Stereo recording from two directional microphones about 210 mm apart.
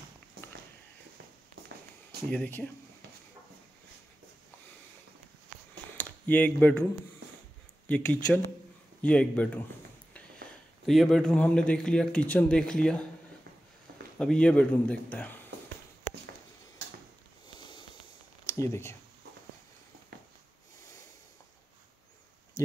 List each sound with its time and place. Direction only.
0.4 s a sound: 50° right (ahead or behind)
2.2 s speech: 5° left (ahead or behind)
5.9 s speech: 5° left (ahead or behind)
7.9 s speech: 5° left (ahead or behind)
10.9 s speech: centre (ahead or behind)
14.1 s speech: 5° left (ahead or behind)
18.5 s speech: 15° left (ahead or behind)